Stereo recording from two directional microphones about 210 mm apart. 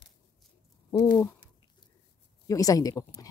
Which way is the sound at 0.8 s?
15° left (ahead or behind).